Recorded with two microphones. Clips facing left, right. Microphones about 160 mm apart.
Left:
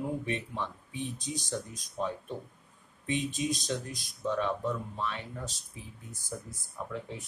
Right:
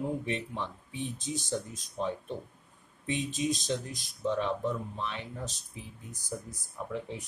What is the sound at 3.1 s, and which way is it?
Speech, 20° right (ahead or behind).